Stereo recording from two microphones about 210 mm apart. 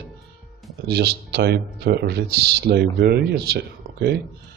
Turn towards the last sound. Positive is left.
turn(degrees=-50)  # may be behind; listen again after turning